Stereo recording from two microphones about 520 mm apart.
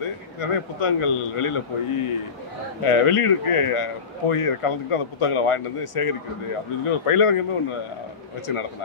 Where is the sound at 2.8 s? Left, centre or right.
Left.